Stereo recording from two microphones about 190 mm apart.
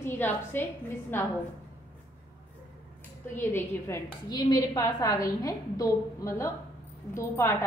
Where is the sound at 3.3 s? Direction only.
10° left (ahead or behind).